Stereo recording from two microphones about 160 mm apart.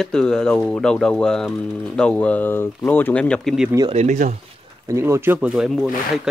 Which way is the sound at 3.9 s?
50° right (ahead or behind).